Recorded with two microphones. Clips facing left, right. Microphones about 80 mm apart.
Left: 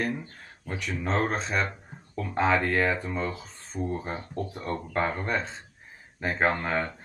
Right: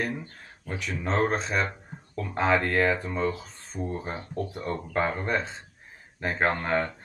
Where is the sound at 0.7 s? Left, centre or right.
Centre.